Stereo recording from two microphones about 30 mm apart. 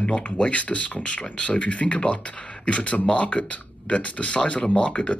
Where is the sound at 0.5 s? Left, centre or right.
Left.